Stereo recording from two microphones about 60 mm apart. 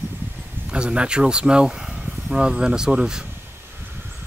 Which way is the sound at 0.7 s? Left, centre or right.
Centre.